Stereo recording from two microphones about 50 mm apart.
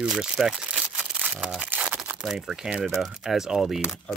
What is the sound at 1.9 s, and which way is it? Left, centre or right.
Crumpling, centre.